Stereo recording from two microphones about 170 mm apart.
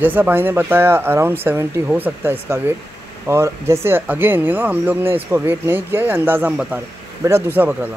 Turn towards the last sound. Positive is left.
turn(degrees=-10)  # may be behind; listen again after turning